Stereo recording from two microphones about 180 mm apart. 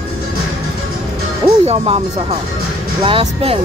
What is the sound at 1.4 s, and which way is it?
Speech, 35° right (ahead or behind).